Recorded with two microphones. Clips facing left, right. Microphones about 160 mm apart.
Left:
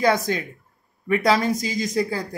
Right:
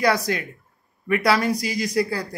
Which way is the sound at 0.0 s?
25° left (ahead or behind).